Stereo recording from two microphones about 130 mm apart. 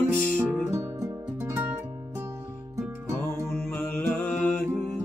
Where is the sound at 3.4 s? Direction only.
15° left (ahead or behind).